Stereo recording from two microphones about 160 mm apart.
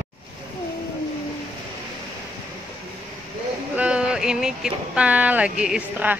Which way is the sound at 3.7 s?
5° right (ahead or behind).